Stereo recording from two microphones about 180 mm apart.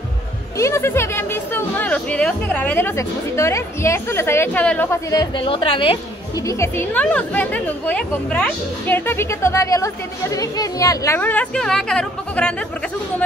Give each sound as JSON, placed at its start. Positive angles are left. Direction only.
{"t": 0.6, "sound": "speech", "side_deg": 15}
{"t": 5.1, "sound": "a woman's voice", "side_deg": 25}
{"t": 6.4, "sound": "speech", "side_deg": 15}